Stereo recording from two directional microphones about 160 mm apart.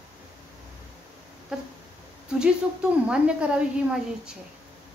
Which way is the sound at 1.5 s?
5° right (ahead or behind).